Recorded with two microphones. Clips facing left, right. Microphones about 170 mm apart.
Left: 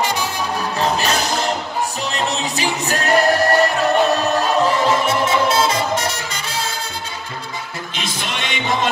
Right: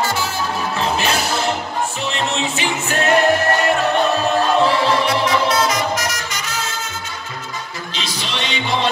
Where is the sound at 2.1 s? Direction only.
35° left (ahead or behind).